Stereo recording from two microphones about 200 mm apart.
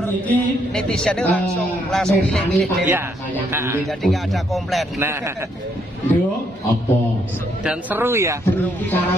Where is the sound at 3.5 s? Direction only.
10° right (ahead or behind).